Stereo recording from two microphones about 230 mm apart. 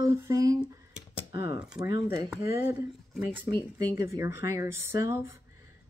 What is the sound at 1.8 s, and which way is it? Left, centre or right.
Speech, right.